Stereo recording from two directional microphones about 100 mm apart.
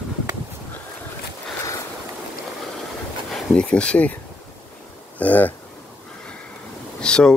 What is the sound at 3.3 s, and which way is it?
Speech, 10° left (ahead or behind).